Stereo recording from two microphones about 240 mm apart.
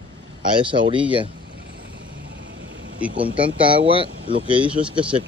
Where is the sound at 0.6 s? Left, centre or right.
Right.